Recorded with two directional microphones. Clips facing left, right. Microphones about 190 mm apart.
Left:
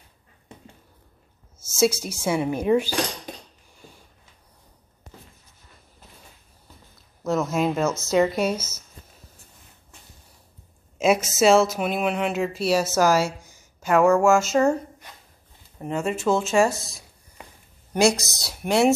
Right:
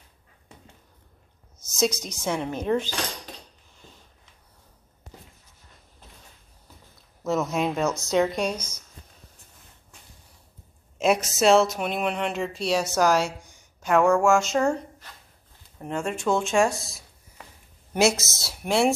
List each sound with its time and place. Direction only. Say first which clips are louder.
1.8 s speech: left 4 dB; 10° left (ahead or behind)
3.8 s a sound: left 3 dB; 10° left (ahead or behind)
7.2 s speech: left 2 dB; centre (ahead or behind)
11.0 s speech: left 2 dB; centre (ahead or behind)
15.8 s speech: left 3 dB; 5° left (ahead or behind)